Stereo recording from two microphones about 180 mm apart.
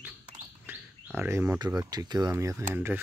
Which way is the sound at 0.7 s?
10° right (ahead or behind).